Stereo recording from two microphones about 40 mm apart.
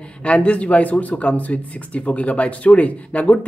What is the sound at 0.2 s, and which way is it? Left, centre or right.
Speech, left.